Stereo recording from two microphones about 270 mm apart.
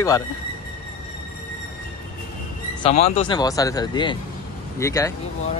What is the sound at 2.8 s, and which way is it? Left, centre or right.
Speech, left.